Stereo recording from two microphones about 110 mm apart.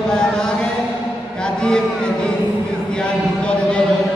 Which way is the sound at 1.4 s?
5° left (ahead or behind).